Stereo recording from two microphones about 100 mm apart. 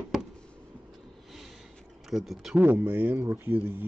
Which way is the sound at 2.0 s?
Centre (ahead or behind).